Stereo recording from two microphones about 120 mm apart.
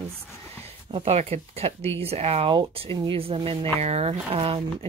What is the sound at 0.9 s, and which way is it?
Speech, 60° right (ahead or behind).